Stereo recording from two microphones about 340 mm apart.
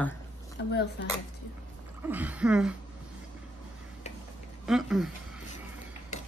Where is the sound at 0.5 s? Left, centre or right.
Left.